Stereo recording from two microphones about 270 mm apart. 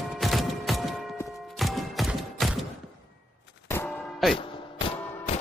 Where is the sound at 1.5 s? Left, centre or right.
Centre.